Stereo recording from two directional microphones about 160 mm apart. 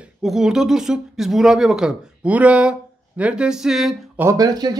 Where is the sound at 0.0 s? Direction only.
Centre (ahead or behind).